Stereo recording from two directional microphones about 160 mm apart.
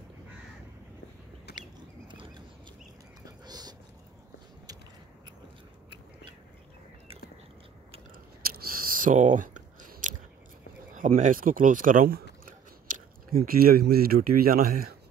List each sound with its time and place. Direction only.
1.5 s a sound: 90° left
2.0 s a sound: 30° right (ahead or behind)
8.6 s chewing: 60° right (ahead or behind)
11.0 s speech: 55° right (ahead or behind)
12.4 s biting: 60° right (ahead or behind)
13.5 s speech: 70° right (ahead or behind)